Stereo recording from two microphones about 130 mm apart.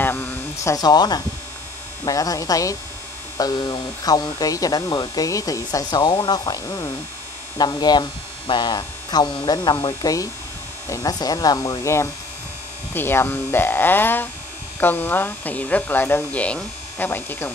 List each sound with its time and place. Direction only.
0.0 s a sound: 20° left (ahead or behind)
2.0 s speech: 25° left (ahead or behind)
7.5 s hum: 30° left (ahead or behind)
10.9 s speech: 30° left (ahead or behind)